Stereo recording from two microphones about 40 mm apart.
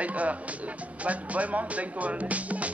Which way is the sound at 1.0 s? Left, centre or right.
Right.